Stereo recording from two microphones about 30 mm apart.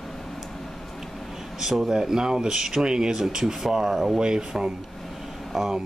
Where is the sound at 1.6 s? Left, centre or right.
Centre.